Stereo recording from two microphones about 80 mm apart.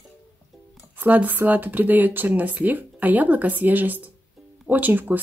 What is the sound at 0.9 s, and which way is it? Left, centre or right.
Speech, right.